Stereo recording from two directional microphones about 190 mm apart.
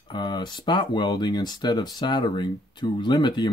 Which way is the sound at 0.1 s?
25° left (ahead or behind).